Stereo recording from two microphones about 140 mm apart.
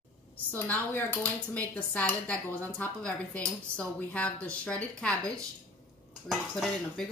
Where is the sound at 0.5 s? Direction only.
15° left (ahead or behind).